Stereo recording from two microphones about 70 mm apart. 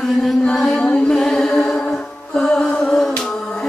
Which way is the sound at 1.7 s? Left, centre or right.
Centre.